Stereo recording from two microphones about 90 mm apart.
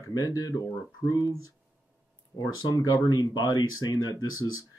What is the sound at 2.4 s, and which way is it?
Speech, 45° left (ahead or behind).